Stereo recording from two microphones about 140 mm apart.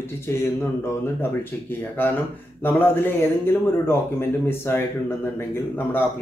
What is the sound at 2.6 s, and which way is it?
A man's voice, 15° left (ahead or behind).